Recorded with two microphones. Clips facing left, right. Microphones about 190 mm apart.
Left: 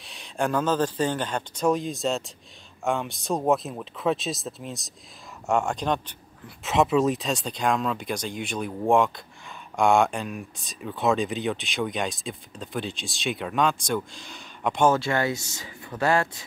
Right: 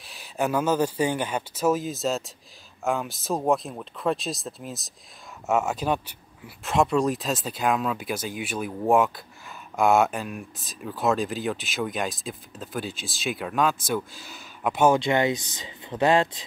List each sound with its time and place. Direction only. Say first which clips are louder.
0.0 s speech: even; centre (ahead or behind)
15.0 s speech: right 3 dB; 20° right (ahead or behind)